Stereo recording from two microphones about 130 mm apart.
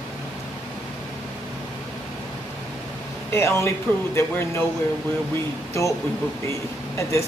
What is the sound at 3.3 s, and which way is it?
Speech, 20° left (ahead or behind).